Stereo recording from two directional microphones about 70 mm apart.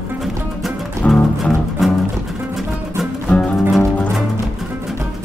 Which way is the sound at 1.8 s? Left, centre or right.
Centre.